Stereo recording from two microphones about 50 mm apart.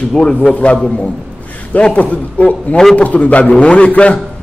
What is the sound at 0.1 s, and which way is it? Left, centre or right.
A man's voice, centre.